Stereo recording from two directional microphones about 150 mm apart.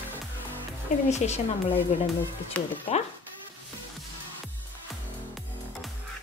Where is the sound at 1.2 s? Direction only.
45° left (ahead or behind).